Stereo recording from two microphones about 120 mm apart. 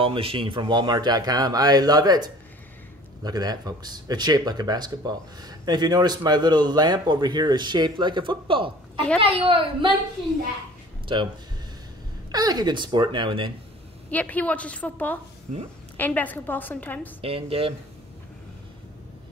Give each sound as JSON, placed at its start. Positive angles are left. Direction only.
{"t": 0.0, "sound": "a woman's voice", "side_deg": -50}
{"t": 11.1, "sound": "speech", "side_deg": -40}
{"t": 12.3, "sound": "speech", "side_deg": -35}
{"t": 14.1, "sound": "a woman's voice", "side_deg": 15}
{"t": 15.5, "sound": "a woman's voice", "side_deg": -85}
{"t": 16.0, "sound": "a woman's voice", "side_deg": 15}
{"t": 17.2, "sound": "a woman's voice", "side_deg": -50}